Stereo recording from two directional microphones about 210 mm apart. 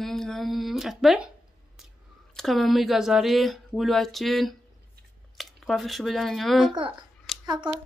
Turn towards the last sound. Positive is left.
turn(degrees=-25)  # may be behind; listen again after turning